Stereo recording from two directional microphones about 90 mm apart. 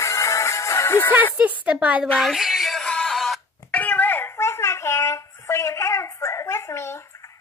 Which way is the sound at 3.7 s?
15° left (ahead or behind).